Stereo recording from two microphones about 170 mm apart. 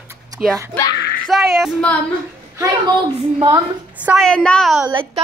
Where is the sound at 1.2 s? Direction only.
Centre (ahead or behind).